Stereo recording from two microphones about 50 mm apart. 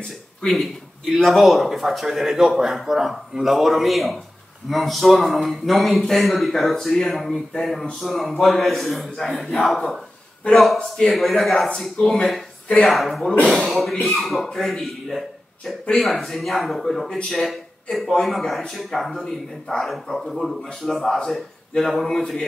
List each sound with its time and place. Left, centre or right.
1.1 s speech: centre
7.5 s a sound: centre
8.0 s speech: centre
12.6 s speech: centre
12.9 s speech: centre